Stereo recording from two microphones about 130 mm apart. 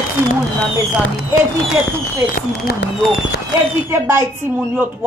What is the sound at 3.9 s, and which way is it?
Speech, 20° right (ahead or behind).